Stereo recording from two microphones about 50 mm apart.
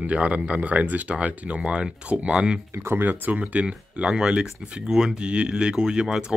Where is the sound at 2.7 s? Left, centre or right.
Right.